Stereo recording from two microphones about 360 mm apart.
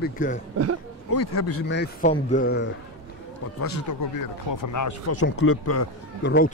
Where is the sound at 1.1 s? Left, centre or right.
Left.